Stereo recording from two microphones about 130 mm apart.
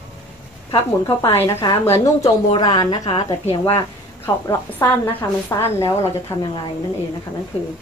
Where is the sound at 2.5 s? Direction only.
30° left (ahead or behind).